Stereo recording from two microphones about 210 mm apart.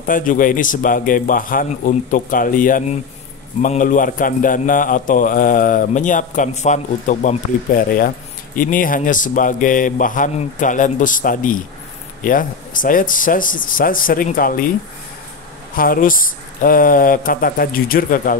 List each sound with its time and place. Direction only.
0.0 s a man's voice: 40° left (ahead or behind)
15.7 s a man's voice: 40° left (ahead or behind)